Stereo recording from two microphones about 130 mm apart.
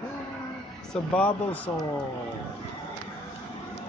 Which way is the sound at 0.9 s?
10° left (ahead or behind).